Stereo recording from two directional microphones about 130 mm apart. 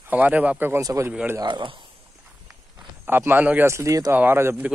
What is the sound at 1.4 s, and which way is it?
Speech, 35° right (ahead or behind).